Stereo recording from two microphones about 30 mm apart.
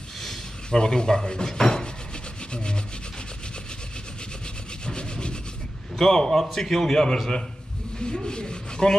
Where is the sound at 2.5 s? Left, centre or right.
Left.